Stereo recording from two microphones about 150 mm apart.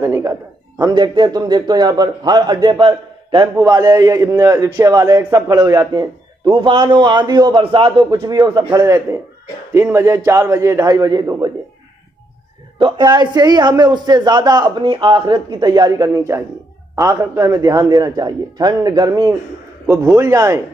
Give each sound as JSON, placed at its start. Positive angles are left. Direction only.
{"t": 0.0, "sound": "a man's voice", "side_deg": -20}
{"t": 3.6, "sound": "a man's voice", "side_deg": -20}
{"t": 12.7, "sound": "a man's voice", "side_deg": -30}